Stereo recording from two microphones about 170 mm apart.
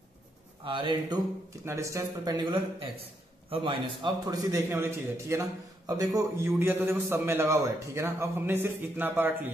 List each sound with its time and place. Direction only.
0.7 s a man's voice: 30° right (ahead or behind)
2.4 s a man's voice: 30° right (ahead or behind); by 9.5 s 10° right (ahead or behind)